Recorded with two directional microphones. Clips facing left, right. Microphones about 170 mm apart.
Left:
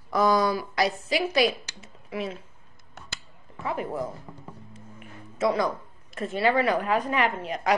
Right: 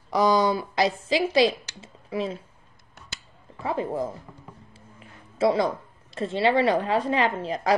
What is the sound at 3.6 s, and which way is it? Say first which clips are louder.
A woman's voice: right 3 dB; 30° right (ahead or behind).